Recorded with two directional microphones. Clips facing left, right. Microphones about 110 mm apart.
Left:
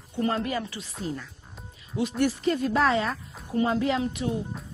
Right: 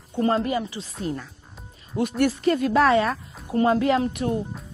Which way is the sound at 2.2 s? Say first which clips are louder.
Right 4 dB; 60° right (ahead or behind).